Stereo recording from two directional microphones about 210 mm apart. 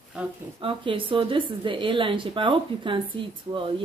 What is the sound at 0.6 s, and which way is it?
A woman's voice, 25° right (ahead or behind).